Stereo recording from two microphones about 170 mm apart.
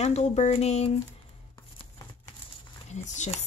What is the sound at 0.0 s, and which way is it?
Speech, 40° left (ahead or behind).